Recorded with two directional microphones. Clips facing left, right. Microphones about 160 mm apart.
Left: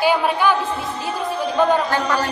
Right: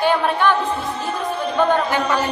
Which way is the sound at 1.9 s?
20° right (ahead or behind).